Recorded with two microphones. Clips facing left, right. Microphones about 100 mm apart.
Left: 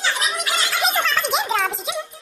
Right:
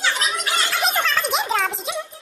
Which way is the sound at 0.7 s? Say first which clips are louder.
Left 1 dB; centre (ahead or behind).